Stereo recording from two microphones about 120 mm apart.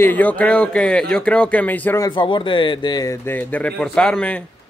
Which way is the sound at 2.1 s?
45° left (ahead or behind).